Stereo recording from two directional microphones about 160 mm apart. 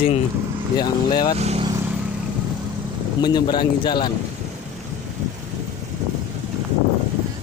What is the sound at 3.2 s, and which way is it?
Speech, 25° left (ahead or behind).